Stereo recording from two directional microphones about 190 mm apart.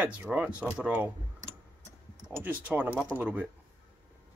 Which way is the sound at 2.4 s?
10° right (ahead or behind).